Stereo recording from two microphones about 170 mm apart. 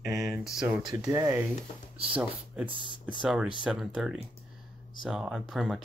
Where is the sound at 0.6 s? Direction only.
5° right (ahead or behind).